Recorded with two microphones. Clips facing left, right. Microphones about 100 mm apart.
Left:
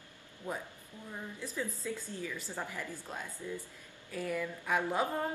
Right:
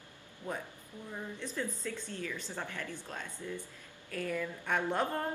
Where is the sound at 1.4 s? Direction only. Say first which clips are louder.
Even; 10° left (ahead or behind).